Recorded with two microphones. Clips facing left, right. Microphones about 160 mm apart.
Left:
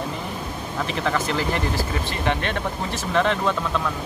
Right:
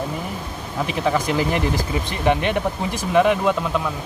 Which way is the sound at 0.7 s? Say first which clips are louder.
Right 3 dB; 10° right (ahead or behind).